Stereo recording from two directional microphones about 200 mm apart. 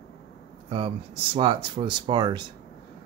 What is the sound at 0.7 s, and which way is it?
Speech, 25° right (ahead or behind).